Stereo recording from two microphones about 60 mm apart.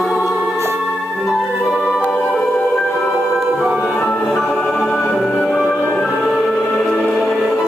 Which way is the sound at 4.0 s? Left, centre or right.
Centre.